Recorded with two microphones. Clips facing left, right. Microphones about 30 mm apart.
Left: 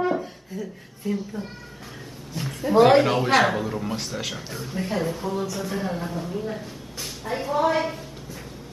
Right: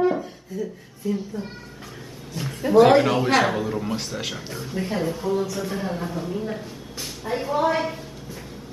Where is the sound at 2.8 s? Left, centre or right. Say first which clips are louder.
Right 1 dB; centre.